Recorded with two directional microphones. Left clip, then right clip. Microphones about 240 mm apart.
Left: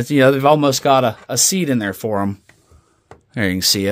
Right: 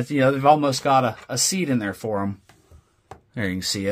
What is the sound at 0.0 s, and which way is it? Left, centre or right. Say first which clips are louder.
Speech: left 5 dB; left.